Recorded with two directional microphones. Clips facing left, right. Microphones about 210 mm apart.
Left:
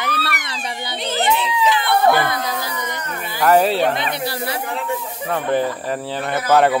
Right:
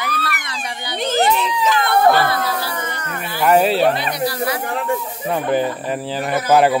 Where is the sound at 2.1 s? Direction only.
15° left (ahead or behind).